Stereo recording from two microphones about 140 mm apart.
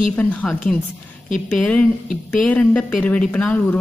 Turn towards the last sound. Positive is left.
turn(degrees=10)  # may be behind; listen again after turning